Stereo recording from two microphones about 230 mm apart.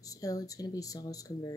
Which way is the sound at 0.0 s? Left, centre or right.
Centre.